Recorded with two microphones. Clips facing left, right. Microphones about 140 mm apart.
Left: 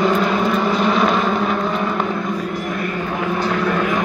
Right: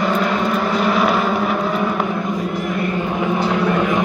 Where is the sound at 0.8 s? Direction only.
5° right (ahead or behind).